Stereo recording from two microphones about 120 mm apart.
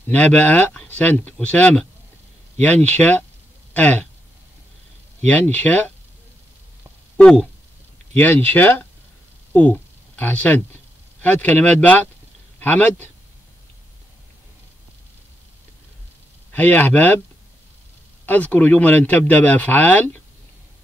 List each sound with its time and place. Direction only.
0.1 s speech: 15° left (ahead or behind)
5.2 s speech: 10° left (ahead or behind)
7.2 s speech: 5° left (ahead or behind)
9.5 s a sound: 15° left (ahead or behind)
11.1 s speech: 15° left (ahead or behind)
16.5 s speech: 15° left (ahead or behind)
18.2 s speech: 15° left (ahead or behind)